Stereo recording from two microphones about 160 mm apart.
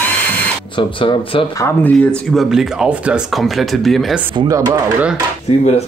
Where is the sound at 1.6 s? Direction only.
15° left (ahead or behind).